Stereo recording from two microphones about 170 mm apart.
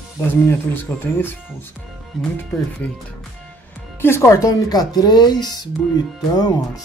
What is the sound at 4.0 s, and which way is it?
Speech, 15° left (ahead or behind).